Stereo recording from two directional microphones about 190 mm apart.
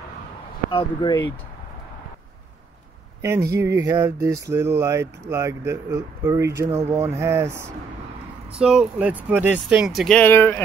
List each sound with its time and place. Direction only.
0.7 s speech: 25° left (ahead or behind)
3.2 s speech: 15° right (ahead or behind); by 10.6 s 10° left (ahead or behind)